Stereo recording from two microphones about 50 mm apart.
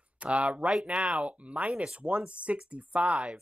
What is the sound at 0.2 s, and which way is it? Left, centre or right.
A man's voice, right.